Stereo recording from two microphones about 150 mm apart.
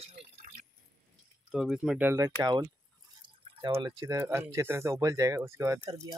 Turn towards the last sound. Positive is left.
turn(degrees=-25)  # may be behind; listen again after turning